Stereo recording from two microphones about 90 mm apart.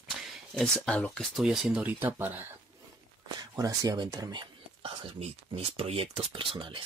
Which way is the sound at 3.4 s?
45° right (ahead or behind).